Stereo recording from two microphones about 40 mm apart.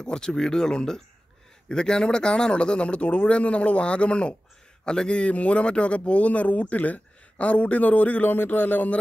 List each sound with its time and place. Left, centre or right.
0.0 s speech: centre
5.3 s speech: left